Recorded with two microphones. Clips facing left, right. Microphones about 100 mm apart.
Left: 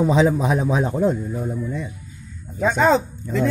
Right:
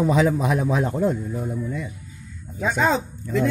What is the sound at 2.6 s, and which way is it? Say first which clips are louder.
Speech: left 3 dB; 30° left (ahead or behind).